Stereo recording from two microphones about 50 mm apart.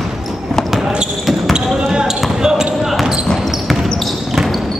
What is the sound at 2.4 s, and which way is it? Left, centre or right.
Basketball bounce, centre.